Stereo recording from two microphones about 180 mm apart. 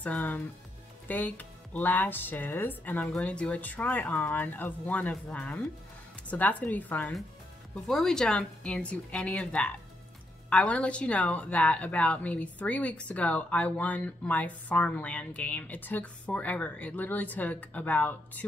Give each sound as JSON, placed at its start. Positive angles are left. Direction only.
{"t": 0.0, "sound": "a woman's voice", "side_deg": 10}